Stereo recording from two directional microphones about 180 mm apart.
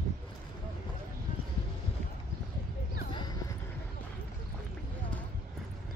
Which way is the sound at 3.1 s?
25° left (ahead or behind).